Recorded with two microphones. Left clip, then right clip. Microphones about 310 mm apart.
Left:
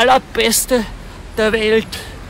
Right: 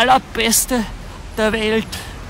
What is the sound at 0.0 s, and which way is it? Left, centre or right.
Speech, centre.